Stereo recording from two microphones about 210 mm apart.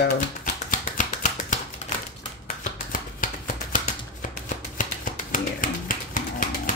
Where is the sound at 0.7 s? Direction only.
40° left (ahead or behind).